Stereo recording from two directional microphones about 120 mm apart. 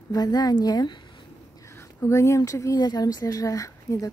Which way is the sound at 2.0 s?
25° left (ahead or behind).